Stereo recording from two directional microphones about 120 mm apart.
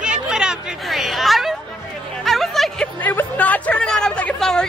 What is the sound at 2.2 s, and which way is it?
Music, centre (ahead or behind).